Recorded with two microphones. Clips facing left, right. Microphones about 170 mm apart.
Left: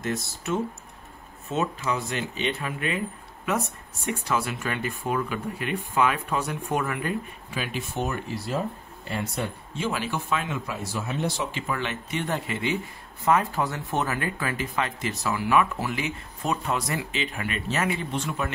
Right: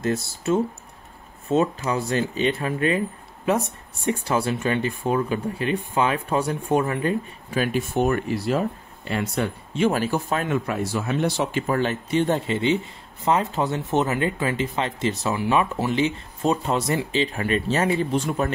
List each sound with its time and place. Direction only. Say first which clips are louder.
0.0 s speech: right 5 dB; 30° right (ahead or behind)
7.5 s speech: right 8 dB; 45° right (ahead or behind); by 8.5 s 65° right (ahead or behind)
9.8 s speech: right 8 dB; 45° right (ahead or behind); by 11.6 s 65° right (ahead or behind)
11.6 s speech: right 7 dB; 40° right (ahead or behind)